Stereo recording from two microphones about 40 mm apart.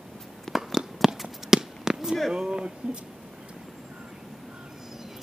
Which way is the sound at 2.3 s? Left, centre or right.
Right.